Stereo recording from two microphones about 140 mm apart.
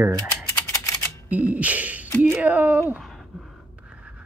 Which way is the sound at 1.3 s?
10° right (ahead or behind).